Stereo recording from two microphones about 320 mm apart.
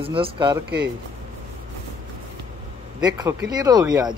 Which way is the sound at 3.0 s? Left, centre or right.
Centre.